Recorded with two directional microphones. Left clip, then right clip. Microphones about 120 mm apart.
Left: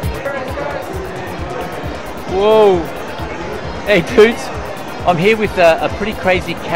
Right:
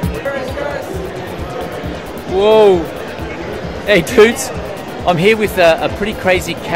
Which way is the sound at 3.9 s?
25° right (ahead or behind).